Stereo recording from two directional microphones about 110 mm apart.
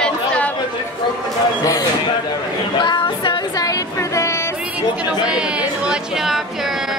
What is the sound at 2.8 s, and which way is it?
Female singing, 45° left (ahead or behind).